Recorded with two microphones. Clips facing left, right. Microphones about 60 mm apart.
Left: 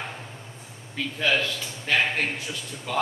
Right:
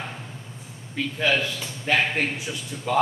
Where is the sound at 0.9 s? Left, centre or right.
Centre.